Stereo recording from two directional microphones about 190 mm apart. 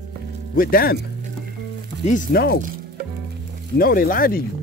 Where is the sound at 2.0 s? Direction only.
50° left (ahead or behind).